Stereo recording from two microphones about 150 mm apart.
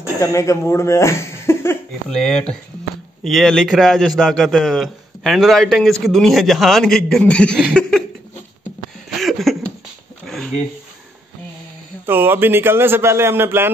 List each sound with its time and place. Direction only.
0.2 s speech: 20° left (ahead or behind)
2.0 s a man's voice: 5° left (ahead or behind)
9.1 s a sound: centre (ahead or behind)
12.1 s a man's voice: 15° right (ahead or behind)